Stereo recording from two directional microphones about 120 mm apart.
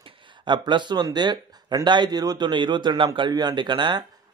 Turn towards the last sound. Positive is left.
turn(degrees=-40)  # may be behind; listen again after turning